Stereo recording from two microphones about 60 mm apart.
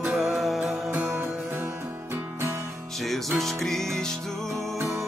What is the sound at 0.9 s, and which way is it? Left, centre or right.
Music, right.